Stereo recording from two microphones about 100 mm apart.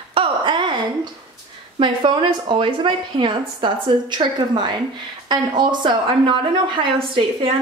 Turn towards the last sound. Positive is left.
turn(degrees=-60)  # may be behind; listen again after turning